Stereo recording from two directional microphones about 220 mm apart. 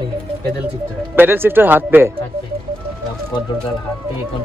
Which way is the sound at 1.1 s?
10° right (ahead or behind).